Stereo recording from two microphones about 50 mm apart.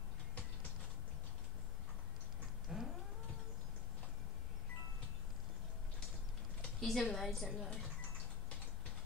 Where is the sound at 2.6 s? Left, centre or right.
Centre.